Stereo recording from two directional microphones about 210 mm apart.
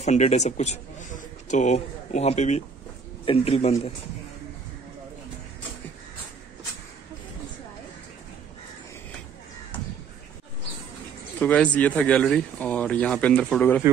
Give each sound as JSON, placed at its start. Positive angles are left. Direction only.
{"t": 0.0, "sound": "a man's voice", "side_deg": 35}
{"t": 11.3, "sound": "speech", "side_deg": 5}